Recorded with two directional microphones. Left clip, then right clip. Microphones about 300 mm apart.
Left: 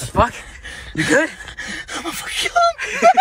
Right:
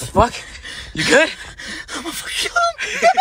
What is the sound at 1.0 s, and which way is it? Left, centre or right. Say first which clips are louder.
Speech: right 3 dB; centre.